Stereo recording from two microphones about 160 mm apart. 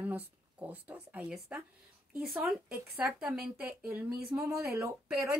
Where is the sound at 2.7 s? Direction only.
15° right (ahead or behind).